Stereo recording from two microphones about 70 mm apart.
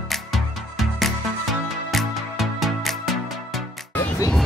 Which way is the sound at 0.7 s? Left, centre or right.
Centre.